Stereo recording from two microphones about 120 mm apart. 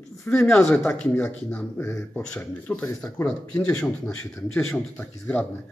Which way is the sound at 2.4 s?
15° left (ahead or behind).